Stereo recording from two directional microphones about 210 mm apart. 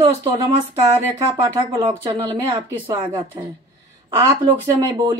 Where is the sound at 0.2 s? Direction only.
20° right (ahead or behind).